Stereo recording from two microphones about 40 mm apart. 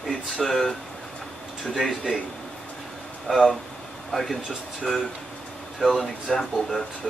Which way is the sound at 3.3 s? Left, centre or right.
Centre.